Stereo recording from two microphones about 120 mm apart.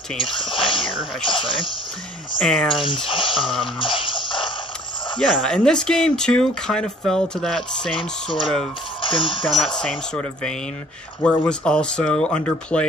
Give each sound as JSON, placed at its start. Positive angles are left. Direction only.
{"t": 0.2, "sound": "speech", "side_deg": 45}
{"t": 2.3, "sound": "speech", "side_deg": 5}
{"t": 2.8, "sound": "speech", "side_deg": 45}
{"t": 3.8, "sound": "music", "side_deg": 45}
{"t": 5.2, "sound": "speech", "side_deg": 5}
{"t": 7.9, "sound": "speech", "side_deg": 45}
{"t": 9.6, "sound": "speech", "side_deg": 5}